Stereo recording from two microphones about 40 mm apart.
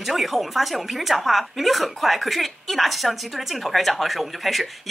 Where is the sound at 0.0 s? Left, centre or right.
Centre.